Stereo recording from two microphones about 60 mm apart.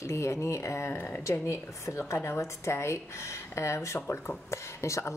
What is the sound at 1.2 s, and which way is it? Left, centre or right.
A woman's voice, left.